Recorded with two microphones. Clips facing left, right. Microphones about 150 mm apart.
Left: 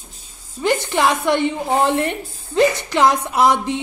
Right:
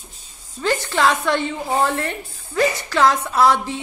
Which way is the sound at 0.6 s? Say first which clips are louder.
Left 1 dB; 15° left (ahead or behind).